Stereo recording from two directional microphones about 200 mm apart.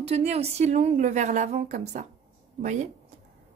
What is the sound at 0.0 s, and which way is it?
A woman's voice, 30° right (ahead or behind).